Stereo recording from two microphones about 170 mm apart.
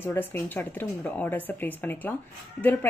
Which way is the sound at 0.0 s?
10° left (ahead or behind).